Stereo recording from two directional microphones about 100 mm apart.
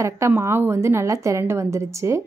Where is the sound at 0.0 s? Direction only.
30° right (ahead or behind).